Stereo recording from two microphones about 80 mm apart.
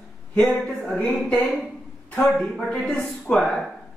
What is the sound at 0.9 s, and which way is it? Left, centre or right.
Speech, centre.